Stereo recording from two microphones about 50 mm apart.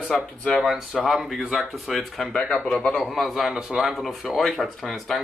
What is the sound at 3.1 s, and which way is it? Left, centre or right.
Speech, centre.